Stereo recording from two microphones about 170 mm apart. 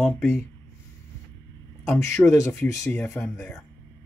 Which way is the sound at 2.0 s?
15° left (ahead or behind).